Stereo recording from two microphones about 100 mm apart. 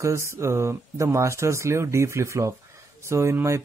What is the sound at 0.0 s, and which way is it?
Speech, 30° right (ahead or behind).